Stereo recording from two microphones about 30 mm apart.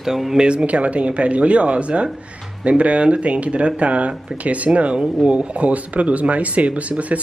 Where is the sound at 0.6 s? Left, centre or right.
Right.